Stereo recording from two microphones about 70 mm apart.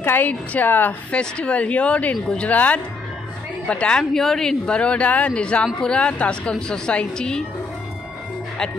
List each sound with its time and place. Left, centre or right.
0.0 s a woman's voice: left
1.1 s a woman's voice: centre
4.0 s a woman's voice: centre